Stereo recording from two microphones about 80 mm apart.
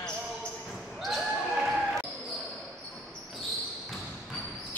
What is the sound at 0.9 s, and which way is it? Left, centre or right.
Basketball bounce, centre.